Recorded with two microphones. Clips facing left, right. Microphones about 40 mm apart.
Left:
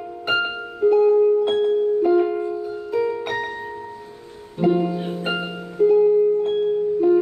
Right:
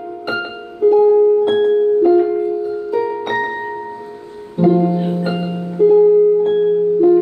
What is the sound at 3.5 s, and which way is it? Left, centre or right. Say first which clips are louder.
Music: right 7 dB; right.